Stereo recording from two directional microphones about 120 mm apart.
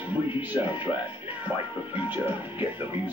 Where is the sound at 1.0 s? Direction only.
15° right (ahead or behind).